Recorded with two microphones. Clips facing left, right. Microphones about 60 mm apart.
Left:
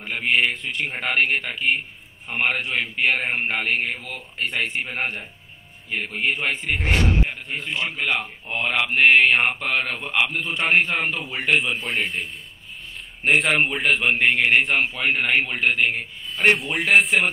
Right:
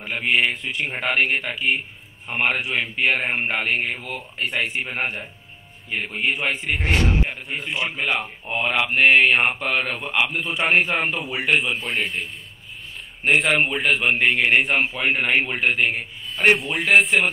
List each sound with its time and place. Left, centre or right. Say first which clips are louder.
0.0 s mantra: even; centre
2.4 s a man's voice: right 1 dB; centre
7.2 s a man's voice: right 1 dB; centre
8.5 s mantra: right 1 dB; centre
11.8 s a man's voice: even; left
13.2 s mantra: even; centre
14.8 s a man's voice: right 1 dB; centre
16.4 s mantra: right 1 dB; centre